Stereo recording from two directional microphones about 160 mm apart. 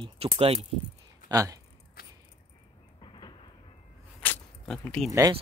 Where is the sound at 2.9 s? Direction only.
30° left (ahead or behind).